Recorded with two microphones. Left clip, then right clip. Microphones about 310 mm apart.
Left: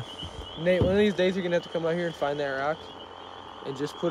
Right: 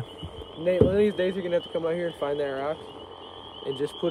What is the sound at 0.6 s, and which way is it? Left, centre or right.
Speech, left.